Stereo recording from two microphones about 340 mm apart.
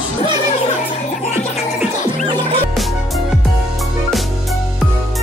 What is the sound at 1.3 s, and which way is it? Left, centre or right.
Music, centre.